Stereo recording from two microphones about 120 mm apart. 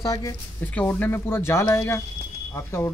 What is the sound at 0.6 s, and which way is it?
Speech, 10° left (ahead or behind).